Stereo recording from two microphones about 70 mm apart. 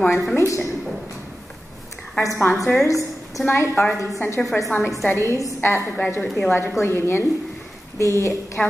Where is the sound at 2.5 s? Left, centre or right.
Left.